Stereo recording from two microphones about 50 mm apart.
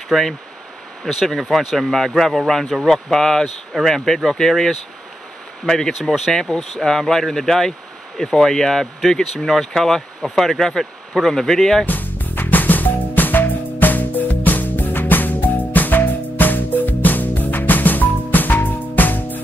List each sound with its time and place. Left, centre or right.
0.1 s speech: centre
1.0 s speech: centre
1.4 s speech: centre
5.9 s speech: centre
6.3 s speech: centre
11.8 s music: left